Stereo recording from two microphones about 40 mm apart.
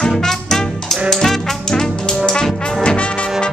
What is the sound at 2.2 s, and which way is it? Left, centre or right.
Brass instrument, centre.